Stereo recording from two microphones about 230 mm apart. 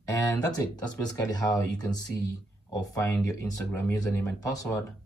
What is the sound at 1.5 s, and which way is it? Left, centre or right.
Speech, centre.